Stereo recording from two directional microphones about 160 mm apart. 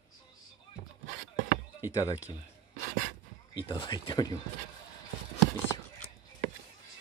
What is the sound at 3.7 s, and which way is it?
Speech, 25° left (ahead or behind).